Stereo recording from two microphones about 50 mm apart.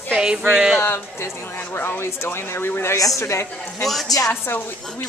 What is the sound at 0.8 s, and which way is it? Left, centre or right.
Speech, left.